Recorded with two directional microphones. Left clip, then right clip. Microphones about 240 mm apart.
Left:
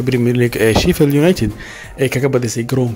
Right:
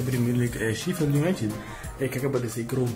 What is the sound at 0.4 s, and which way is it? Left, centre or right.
Speech, left.